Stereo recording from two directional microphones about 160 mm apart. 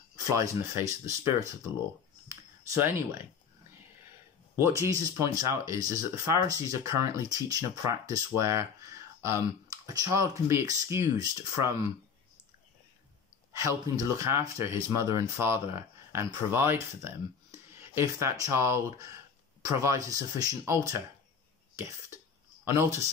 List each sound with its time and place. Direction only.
0.2 s speech: 20° right (ahead or behind)
2.2 s computer keyboard: 15° right (ahead or behind)
4.6 s speech: 20° right (ahead or behind)
13.5 s speech: 20° right (ahead or behind)
20.1 s speech: 20° right (ahead or behind)
21.7 s cough: 15° right (ahead or behind)
22.7 s speech: 20° right (ahead or behind)